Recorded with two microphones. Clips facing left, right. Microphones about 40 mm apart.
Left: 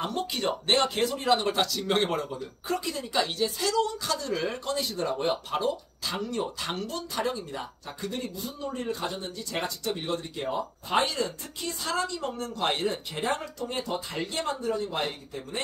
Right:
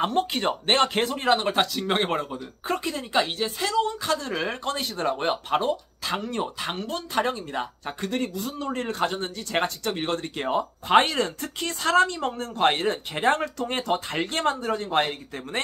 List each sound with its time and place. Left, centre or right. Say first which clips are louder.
0.0 s speech: right 5 dB; right